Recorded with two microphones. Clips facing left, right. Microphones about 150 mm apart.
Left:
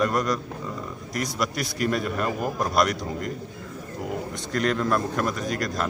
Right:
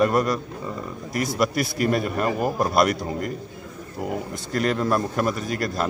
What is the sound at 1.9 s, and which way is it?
Speech, 40° right (ahead or behind).